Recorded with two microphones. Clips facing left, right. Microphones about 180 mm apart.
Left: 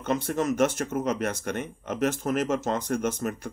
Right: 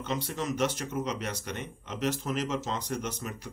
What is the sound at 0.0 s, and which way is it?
Speech, 50° left (ahead or behind).